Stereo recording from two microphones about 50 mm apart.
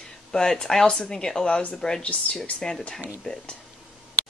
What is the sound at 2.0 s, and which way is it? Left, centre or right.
Speech, left.